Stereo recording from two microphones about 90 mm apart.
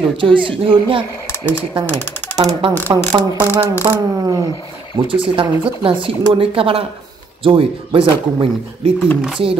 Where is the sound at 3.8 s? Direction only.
60° right (ahead or behind).